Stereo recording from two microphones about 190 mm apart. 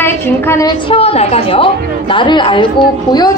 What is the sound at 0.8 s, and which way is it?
A woman's voice, 30° left (ahead or behind).